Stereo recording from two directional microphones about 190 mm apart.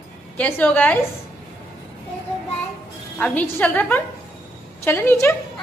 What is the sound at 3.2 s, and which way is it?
A woman's voice, 10° left (ahead or behind).